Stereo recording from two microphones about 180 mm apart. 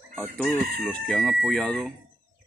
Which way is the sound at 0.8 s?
5° left (ahead or behind).